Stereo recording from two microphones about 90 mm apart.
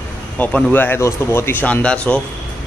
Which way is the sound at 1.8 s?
10° left (ahead or behind).